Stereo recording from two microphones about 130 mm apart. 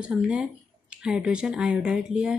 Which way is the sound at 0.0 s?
5° right (ahead or behind).